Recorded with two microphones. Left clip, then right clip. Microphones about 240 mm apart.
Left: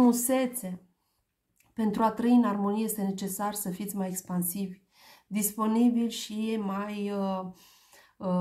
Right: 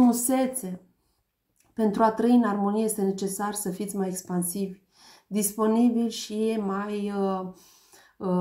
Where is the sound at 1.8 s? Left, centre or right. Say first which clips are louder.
Right 5 dB; left.